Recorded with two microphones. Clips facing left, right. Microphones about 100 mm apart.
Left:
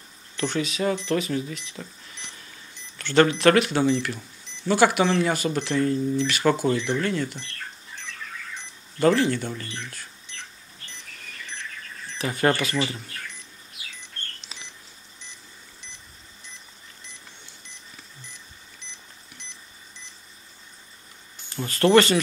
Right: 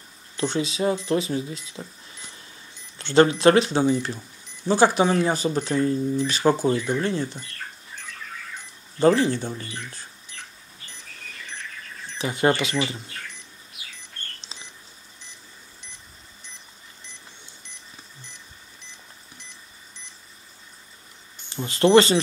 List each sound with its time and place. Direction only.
0.4 s speech: 30° right (ahead or behind)
9.0 s speech: 30° right (ahead or behind)
12.2 s speech: 25° right (ahead or behind)
14.4 s a sound: 30° right (ahead or behind)
18.8 s a sound: centre (ahead or behind)
21.6 s speech: 25° right (ahead or behind)